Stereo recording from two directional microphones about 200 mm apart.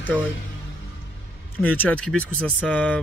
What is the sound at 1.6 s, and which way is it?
Speech, 10° left (ahead or behind).